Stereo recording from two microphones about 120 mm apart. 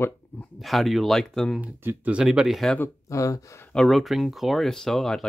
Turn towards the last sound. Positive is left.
turn(degrees=5)  # may be behind; listen again after turning